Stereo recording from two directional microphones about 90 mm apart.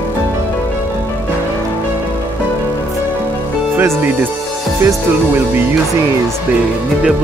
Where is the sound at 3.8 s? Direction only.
20° right (ahead or behind).